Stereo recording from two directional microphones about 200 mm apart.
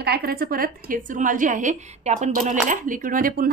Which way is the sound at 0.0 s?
50° right (ahead or behind).